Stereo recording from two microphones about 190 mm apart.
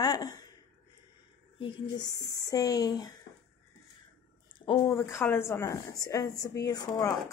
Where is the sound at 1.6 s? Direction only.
25° left (ahead or behind).